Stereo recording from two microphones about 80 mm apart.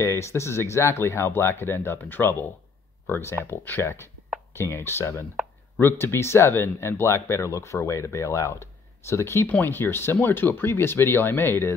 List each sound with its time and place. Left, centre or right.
0.0 s speech: left